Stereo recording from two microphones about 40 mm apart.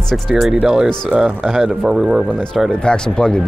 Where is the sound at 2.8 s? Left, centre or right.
Centre.